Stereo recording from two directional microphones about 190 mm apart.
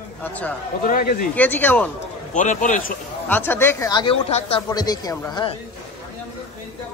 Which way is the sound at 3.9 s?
25° left (ahead or behind).